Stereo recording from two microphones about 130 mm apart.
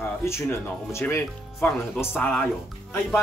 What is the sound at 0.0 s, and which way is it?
Music, 20° left (ahead or behind).